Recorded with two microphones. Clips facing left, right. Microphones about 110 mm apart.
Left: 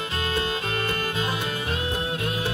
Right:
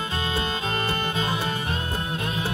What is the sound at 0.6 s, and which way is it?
Music, 30° right (ahead or behind).